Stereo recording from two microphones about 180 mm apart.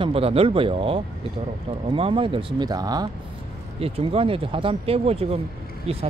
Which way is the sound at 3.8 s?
35° right (ahead or behind).